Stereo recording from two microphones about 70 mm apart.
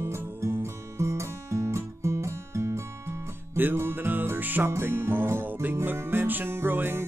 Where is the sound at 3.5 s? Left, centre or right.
Right.